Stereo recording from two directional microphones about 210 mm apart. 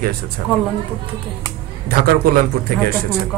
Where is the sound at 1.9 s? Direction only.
45° right (ahead or behind).